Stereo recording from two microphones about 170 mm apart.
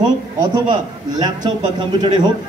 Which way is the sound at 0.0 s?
25° right (ahead or behind).